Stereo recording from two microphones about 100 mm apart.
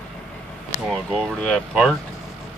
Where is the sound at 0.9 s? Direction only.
Centre (ahead or behind).